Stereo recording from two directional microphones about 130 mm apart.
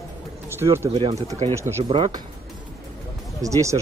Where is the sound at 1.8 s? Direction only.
35° right (ahead or behind).